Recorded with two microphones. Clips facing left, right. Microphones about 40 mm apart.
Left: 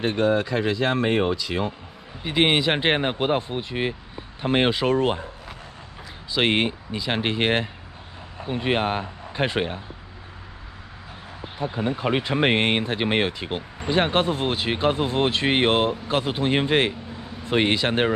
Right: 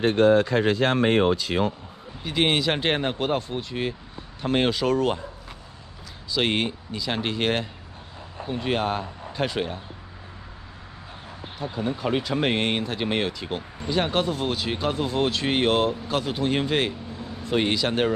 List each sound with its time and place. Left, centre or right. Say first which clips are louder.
0.0 s speech: right 3 dB; right
1.0 s speech: right 2 dB; right
2.2 s speech: left 2 dB; left
6.3 s speech: left 3 dB; left
11.6 s speech: left 2 dB; left